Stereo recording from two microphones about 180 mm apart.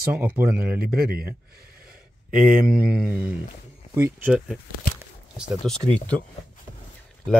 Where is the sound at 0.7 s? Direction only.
55° right (ahead or behind).